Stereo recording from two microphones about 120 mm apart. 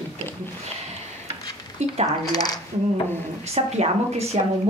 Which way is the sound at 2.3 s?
35° left (ahead or behind).